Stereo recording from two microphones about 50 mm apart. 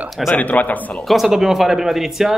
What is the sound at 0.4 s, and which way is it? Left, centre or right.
Speech, left.